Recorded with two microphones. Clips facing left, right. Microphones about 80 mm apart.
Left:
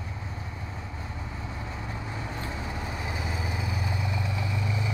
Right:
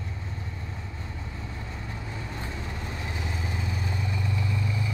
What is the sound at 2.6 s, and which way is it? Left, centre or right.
Vehicle, centre.